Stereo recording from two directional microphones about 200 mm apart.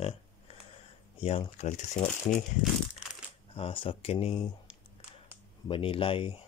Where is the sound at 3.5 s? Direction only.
25° left (ahead or behind).